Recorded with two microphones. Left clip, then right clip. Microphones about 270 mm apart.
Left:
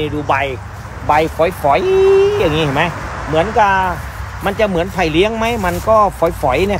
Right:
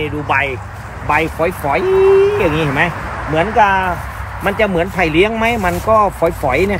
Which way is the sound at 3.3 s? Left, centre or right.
Centre.